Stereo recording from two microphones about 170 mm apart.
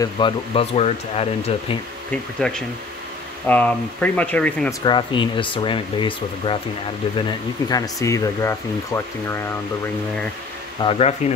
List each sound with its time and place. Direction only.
0.0 s speech: 30° left (ahead or behind)
2.4 s speech: 5° left (ahead or behind)
4.6 s speech: 25° left (ahead or behind)
10.8 s speech: 35° left (ahead or behind)